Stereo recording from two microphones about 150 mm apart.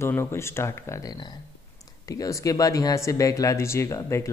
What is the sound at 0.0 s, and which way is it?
Speech, 15° left (ahead or behind).